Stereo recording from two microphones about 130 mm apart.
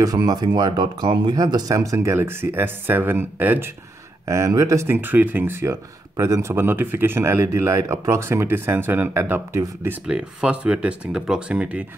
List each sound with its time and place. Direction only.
0.0 s speech: 30° right (ahead or behind)
10.0 s speech: 5° right (ahead or behind)